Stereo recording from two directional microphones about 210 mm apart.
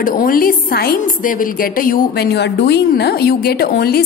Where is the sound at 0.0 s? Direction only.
40° left (ahead or behind).